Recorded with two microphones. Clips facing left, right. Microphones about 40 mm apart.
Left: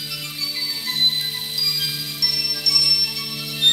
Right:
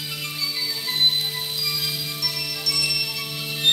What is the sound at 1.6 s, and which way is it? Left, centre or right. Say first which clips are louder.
Music: left 4 dB; right.